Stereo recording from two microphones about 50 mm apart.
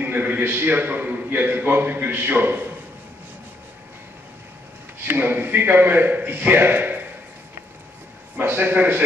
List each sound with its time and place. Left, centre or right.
0.0 s a man's voice: right
5.0 s a man's voice: right
8.4 s a man's voice: right